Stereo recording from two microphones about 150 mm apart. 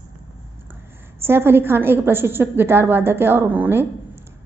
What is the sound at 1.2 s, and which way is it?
A woman's voice, 15° right (ahead or behind).